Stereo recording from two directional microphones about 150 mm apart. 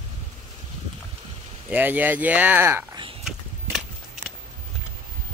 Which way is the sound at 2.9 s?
35° right (ahead or behind).